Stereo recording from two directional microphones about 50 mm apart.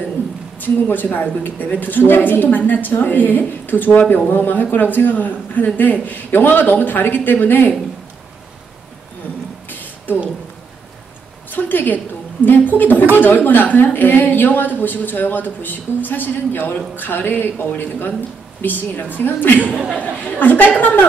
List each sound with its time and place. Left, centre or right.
0.6 s a man's voice: left
9.7 s a sound: left
11.5 s a man's voice: left
19.6 s speech: right
20.2 s a man's voice: left